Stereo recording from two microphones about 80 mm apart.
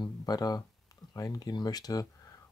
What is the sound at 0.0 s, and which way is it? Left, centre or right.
Speech, left.